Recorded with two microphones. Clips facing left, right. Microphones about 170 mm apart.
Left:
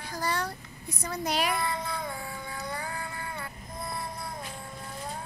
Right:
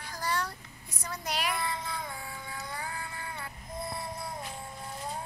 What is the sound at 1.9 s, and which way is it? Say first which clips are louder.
Music: left 4 dB; 65° left (ahead or behind).